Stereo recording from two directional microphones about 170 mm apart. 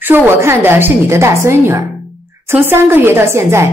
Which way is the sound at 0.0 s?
15° right (ahead or behind).